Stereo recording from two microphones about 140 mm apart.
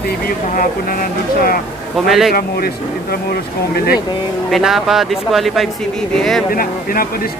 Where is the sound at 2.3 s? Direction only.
90° left.